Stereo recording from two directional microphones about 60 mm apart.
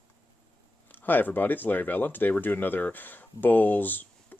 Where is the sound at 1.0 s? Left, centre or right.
Left.